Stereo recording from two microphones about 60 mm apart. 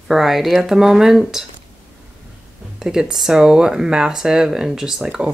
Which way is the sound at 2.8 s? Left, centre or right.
Centre.